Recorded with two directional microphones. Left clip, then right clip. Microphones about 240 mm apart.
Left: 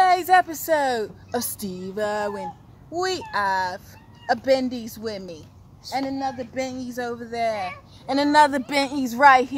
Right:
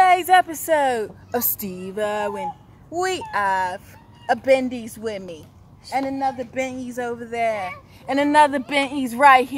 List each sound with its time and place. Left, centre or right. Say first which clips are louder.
0.0 s a woman's voice: right 2 dB; centre
8.4 s a woman's voice: right 1 dB; centre